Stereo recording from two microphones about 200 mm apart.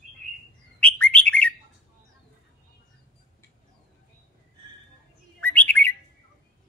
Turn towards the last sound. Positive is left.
turn(degrees=10)  # may be behind; listen again after turning